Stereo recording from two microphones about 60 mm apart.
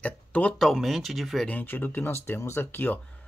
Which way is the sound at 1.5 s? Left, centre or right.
Left.